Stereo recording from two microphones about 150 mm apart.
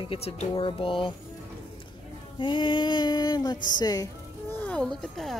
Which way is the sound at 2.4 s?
30° left (ahead or behind).